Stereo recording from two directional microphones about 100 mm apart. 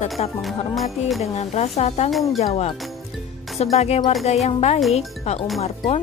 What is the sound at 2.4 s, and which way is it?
Speech, 90° left.